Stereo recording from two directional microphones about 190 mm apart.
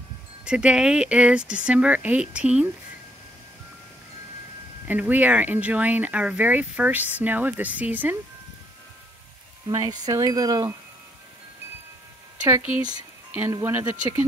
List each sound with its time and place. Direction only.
0.5 s speech: 5° right (ahead or behind)
4.8 s speech: 10° right (ahead or behind)
9.7 s wind chime: 20° right (ahead or behind)
12.4 s speech: 10° right (ahead or behind)